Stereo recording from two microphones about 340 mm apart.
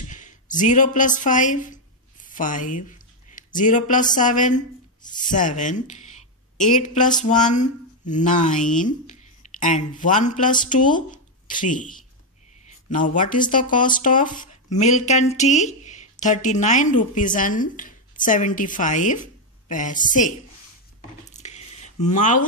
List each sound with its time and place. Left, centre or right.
0.1 s speech: left
21.3 s squish: centre